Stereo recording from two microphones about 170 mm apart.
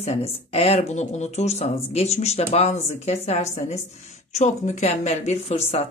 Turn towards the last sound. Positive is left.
turn(degrees=35)  # may be behind; listen again after turning